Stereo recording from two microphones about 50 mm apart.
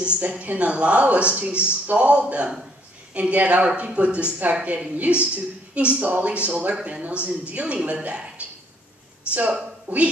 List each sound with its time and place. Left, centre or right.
0.0 s speech: right